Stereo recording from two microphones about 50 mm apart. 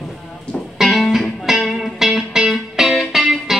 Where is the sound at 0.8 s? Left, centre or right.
Centre.